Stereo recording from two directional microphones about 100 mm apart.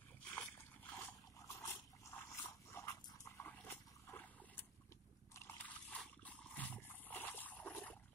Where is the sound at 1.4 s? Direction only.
30° left (ahead or behind).